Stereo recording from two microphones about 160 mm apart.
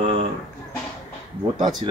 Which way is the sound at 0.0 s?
40° right (ahead or behind).